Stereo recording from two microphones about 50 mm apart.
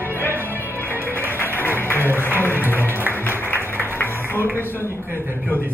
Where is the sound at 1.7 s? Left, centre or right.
Left.